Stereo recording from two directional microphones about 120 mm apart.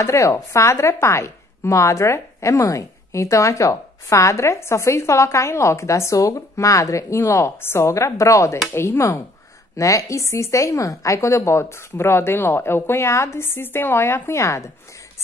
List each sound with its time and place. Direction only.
0.0 s a woman's voice: 25° left (ahead or behind)